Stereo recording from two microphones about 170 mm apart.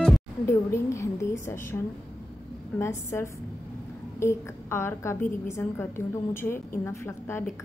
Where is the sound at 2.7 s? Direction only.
15° left (ahead or behind).